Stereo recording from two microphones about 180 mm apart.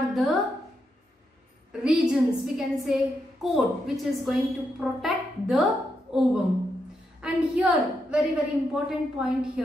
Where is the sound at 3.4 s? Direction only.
Centre (ahead or behind).